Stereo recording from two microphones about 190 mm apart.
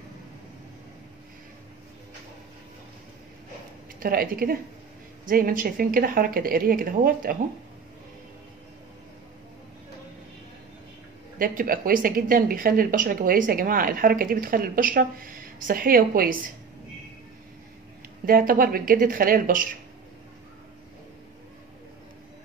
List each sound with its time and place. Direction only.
4.0 s speech: 50° right (ahead or behind)
11.3 s speech: 50° right (ahead or behind)
18.2 s speech: 50° right (ahead or behind)